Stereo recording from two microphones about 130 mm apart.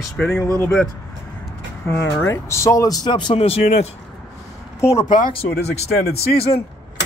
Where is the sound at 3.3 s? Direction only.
50° left (ahead or behind).